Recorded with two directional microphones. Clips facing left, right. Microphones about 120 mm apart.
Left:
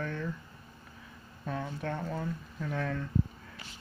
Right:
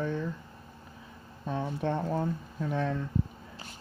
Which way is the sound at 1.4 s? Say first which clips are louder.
Right 4 dB; 25° right (ahead or behind).